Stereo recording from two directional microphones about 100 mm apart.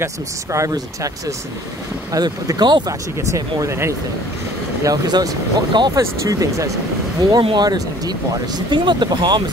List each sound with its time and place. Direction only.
0.0 s speech: 30° right (ahead or behind)
2.1 s speech: 45° right (ahead or behind)
3.2 s speech: 35° right (ahead or behind)
4.8 s speech: 40° right (ahead or behind)
5.9 s speech: 35° right (ahead or behind)